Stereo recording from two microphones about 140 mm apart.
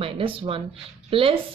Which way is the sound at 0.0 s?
40° right (ahead or behind).